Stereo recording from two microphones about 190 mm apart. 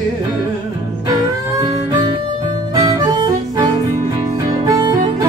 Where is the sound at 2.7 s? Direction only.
20° right (ahead or behind).